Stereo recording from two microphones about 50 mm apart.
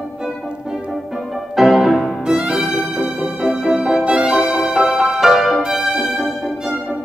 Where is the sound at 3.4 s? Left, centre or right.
Right.